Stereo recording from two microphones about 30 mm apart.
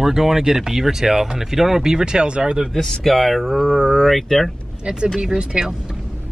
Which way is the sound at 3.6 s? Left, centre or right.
Centre.